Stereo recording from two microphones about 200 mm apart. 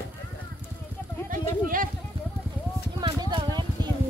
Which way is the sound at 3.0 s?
20° right (ahead or behind).